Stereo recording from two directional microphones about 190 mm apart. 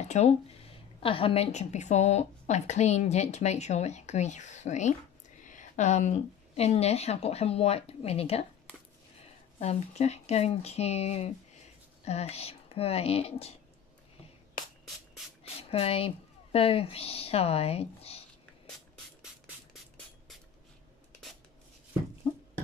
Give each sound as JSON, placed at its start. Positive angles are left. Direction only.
{"t": 0.1, "sound": "a woman's voice", "side_deg": 35}
{"t": 9.6, "sound": "a woman's voice", "side_deg": 35}
{"t": 15.7, "sound": "a woman's voice", "side_deg": 30}